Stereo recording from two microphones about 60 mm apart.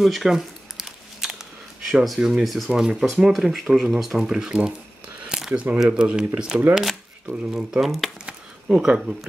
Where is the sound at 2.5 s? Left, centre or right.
Centre.